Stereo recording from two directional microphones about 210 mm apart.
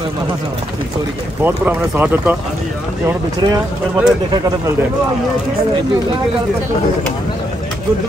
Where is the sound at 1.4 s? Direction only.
10° right (ahead or behind).